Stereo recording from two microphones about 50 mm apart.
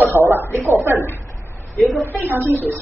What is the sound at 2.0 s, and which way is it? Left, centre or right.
Speech, right.